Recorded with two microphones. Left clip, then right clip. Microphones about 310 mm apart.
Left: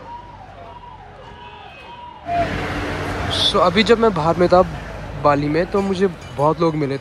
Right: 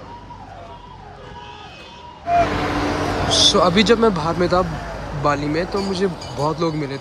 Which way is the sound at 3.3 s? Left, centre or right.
Centre.